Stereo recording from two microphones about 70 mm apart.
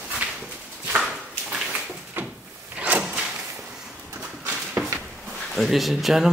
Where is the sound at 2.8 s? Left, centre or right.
Centre.